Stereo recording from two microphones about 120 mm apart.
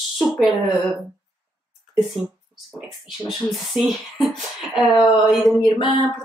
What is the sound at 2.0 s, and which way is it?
Speech, centre (ahead or behind).